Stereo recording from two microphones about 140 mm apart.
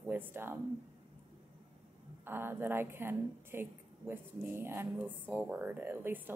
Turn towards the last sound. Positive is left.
turn(degrees=-15)  # may be behind; listen again after turning